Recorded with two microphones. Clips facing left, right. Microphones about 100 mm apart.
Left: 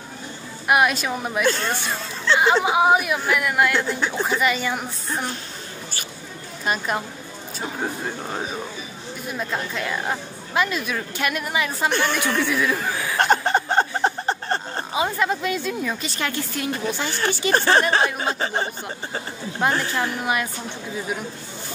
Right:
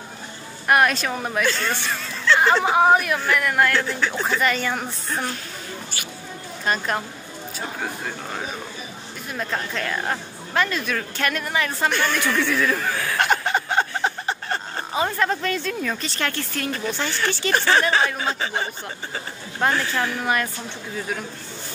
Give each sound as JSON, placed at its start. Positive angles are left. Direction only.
{"t": 0.7, "sound": "a woman's voice", "side_deg": 10}
{"t": 1.5, "sound": "speech", "side_deg": 30}
{"t": 2.3, "sound": "a woman's voice", "side_deg": 10}
{"t": 6.6, "sound": "a woman's voice", "side_deg": 10}
{"t": 7.8, "sound": "speech", "side_deg": 25}
{"t": 9.4, "sound": "a woman's voice", "side_deg": 10}
{"t": 11.9, "sound": "speech", "side_deg": 25}
{"t": 12.4, "sound": "speech", "side_deg": 10}
{"t": 13.2, "sound": "chuckle", "side_deg": 35}
{"t": 15.0, "sound": "a woman's voice", "side_deg": 10}
{"t": 17.5, "sound": "speech", "side_deg": 35}
{"t": 19.7, "sound": "speech", "side_deg": 30}
{"t": 20.0, "sound": "a woman's voice", "side_deg": 15}